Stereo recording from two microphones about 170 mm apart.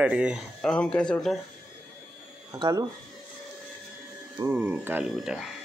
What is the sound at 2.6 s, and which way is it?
Speech, 20° right (ahead or behind).